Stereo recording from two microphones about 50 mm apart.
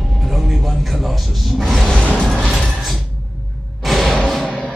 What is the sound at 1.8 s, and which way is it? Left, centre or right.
Mechanisms, left.